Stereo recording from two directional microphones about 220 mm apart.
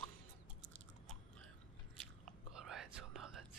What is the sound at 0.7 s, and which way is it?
Chewing, 5° left (ahead or behind).